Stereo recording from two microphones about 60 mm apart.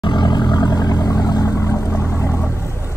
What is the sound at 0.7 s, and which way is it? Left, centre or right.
Vehicle, left.